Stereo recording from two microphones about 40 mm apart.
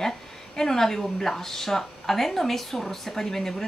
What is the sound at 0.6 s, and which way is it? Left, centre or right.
A woman's voice, centre.